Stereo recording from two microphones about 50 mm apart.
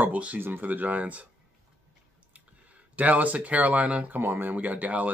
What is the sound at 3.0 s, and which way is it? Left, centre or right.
Speech, right.